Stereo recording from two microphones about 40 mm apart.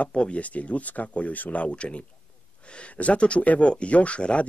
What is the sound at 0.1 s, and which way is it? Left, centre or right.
Speech, left.